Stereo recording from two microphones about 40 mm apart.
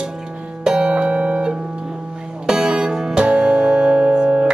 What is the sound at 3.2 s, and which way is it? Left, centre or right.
Music, right.